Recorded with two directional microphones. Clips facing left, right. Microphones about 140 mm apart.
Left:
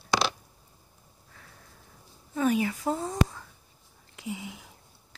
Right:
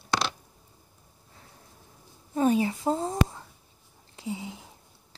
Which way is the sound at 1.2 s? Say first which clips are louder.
Right 1 dB; 25° right (ahead or behind).